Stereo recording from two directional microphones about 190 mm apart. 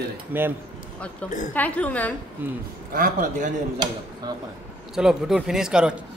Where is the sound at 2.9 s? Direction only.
50° right (ahead or behind).